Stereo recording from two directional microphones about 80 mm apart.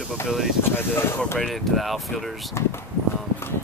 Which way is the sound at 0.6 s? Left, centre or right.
Left.